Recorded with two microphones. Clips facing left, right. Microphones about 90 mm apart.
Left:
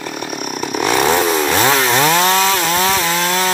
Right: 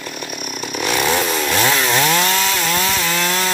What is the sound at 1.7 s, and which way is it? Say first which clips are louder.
Chainsaw: left 3 dB; 40° left (ahead or behind).